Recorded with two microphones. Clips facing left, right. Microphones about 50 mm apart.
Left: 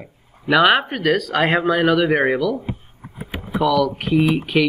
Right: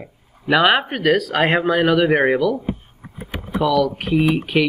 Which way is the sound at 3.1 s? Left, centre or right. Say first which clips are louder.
Even; centre.